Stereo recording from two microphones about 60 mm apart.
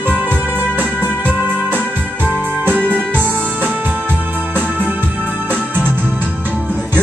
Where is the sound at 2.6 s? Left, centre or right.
Right.